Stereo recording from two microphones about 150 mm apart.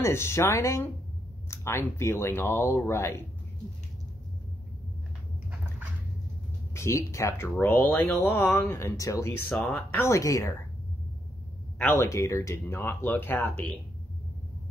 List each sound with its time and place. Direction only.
0.0 s speech: 15° left (ahead or behind)
6.7 s speech: 20° left (ahead or behind)
9.6 s speech: centre (ahead or behind)
9.8 s speech: 15° left (ahead or behind)
11.8 s speech: 15° left (ahead or behind)